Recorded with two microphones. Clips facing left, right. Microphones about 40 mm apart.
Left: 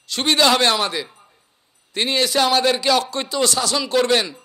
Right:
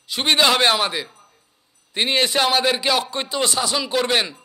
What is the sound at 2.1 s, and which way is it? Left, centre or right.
Speech, right.